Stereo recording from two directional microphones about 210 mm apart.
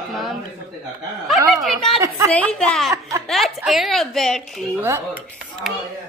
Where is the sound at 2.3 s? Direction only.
5° left (ahead or behind).